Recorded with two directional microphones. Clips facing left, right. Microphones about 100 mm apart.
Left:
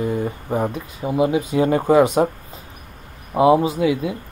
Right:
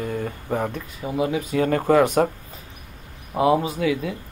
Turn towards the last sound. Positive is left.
turn(degrees=20)  # may be behind; listen again after turning